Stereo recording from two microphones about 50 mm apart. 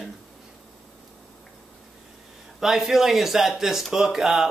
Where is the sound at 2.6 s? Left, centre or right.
Centre.